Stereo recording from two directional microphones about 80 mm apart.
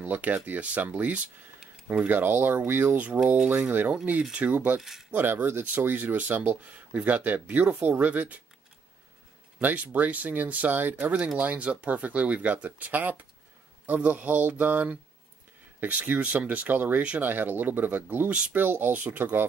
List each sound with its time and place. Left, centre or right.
0.0 s speech: right
9.6 s speech: right